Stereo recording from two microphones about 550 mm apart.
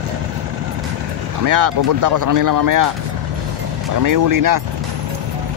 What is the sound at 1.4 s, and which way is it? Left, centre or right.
Speech, right.